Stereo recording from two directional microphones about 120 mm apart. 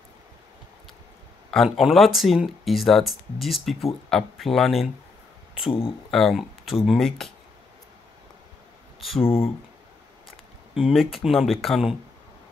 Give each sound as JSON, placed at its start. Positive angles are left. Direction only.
{"t": 1.5, "sound": "speech", "side_deg": 0}
{"t": 5.7, "sound": "speech", "side_deg": 50}
{"t": 6.0, "sound": "speech", "side_deg": 0}
{"t": 10.7, "sound": "speech", "side_deg": -5}